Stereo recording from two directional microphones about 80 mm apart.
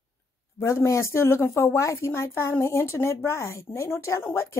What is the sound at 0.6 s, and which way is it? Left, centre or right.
A woman's voice, left.